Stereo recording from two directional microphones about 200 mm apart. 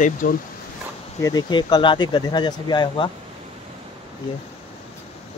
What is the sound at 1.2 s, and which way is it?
Speech, 20° left (ahead or behind).